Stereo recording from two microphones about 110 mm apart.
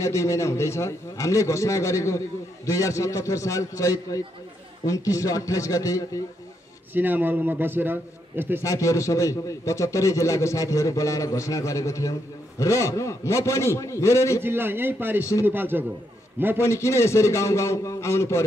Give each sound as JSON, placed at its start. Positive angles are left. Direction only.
{"t": 0.0, "sound": "a man's voice", "side_deg": 25}
{"t": 6.9, "sound": "a man's voice", "side_deg": -15}
{"t": 8.6, "sound": "a man's voice", "side_deg": 30}
{"t": 14.4, "sound": "a man's voice", "side_deg": -20}
{"t": 16.6, "sound": "a man's voice", "side_deg": 25}